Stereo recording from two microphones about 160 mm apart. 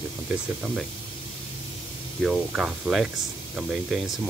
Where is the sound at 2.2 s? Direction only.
Centre (ahead or behind).